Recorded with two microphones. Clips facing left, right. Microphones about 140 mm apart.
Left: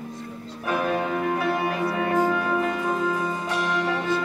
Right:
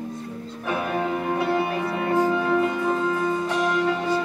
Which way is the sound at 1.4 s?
25° right (ahead or behind).